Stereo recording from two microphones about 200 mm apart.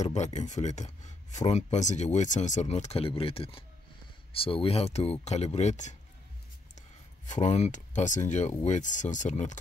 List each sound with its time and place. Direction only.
0.0 s speech: 35° left (ahead or behind)
7.2 s speech: 35° left (ahead or behind)